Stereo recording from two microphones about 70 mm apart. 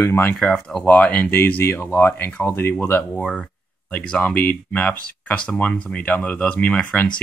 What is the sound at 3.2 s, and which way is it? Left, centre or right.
Speech, centre.